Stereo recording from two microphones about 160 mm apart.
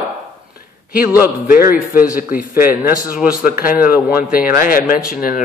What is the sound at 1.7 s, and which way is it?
Speech, 65° left (ahead or behind).